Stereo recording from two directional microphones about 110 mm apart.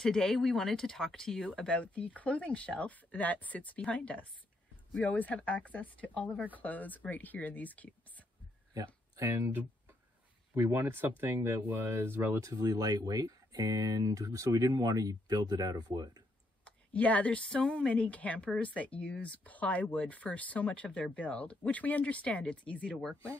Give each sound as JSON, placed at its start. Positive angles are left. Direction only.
{"t": 0.0, "sound": "speech", "side_deg": 5}
{"t": 8.7, "sound": "speech", "side_deg": -30}
{"t": 16.6, "sound": "speech", "side_deg": 10}